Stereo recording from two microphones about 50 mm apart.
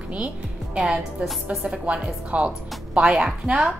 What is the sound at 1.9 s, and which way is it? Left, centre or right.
Speech, right.